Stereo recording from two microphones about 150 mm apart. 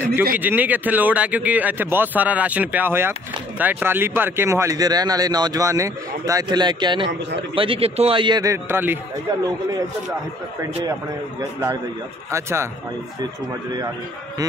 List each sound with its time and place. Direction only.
0.3 s a man's voice: 10° right (ahead or behind)
12.3 s speech: 20° right (ahead or behind)